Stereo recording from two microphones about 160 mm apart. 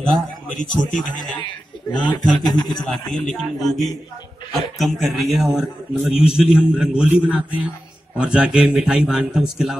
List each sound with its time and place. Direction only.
0.0 s a man's voice: 5° left (ahead or behind)
1.9 s a man's voice: 30° left (ahead or behind)
2.8 s a man's voice: 5° left (ahead or behind)